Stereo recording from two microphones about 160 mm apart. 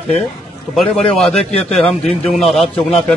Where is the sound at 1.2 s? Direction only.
5° left (ahead or behind).